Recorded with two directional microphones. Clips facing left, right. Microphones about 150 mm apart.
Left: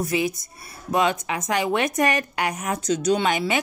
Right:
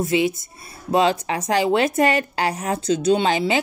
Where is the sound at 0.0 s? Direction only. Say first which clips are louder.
Right 4 dB; 25° right (ahead or behind).